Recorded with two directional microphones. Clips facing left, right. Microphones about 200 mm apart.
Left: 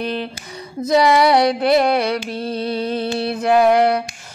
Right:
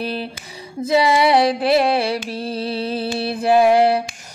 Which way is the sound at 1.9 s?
30° right (ahead or behind).